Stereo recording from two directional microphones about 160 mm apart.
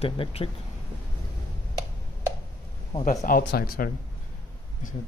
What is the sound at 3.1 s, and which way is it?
Speech, 60° left (ahead or behind).